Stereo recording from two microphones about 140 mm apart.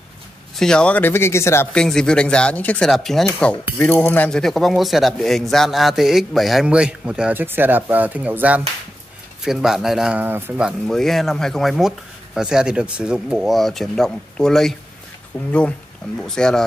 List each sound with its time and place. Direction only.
0.6 s speech: 5° left (ahead or behind)
1.7 s speech: 5° left (ahead or behind); by 10.5 s 15° right (ahead or behind)
10.6 s speech: centre (ahead or behind)
16.2 s speech: 5° left (ahead or behind)